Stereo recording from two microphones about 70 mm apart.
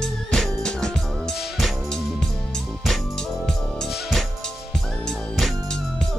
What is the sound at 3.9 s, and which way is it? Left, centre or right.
Music, centre.